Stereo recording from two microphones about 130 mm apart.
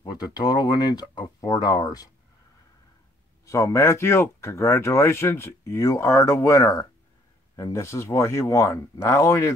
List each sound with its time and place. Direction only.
0.0 s speech: 30° left (ahead or behind)
3.4 s speech: 25° left (ahead or behind)